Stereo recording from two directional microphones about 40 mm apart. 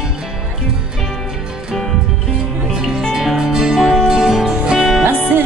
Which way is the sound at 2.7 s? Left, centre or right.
Centre.